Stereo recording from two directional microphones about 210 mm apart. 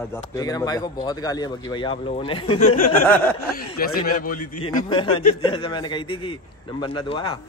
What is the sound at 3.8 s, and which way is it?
Speech, 45° left (ahead or behind).